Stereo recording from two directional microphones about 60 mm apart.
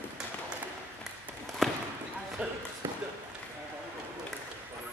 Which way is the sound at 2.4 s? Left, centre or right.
Right.